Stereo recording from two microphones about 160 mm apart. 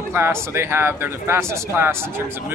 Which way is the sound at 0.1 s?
15° right (ahead or behind).